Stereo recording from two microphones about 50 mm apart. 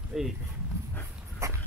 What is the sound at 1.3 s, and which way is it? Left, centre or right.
Dog, right.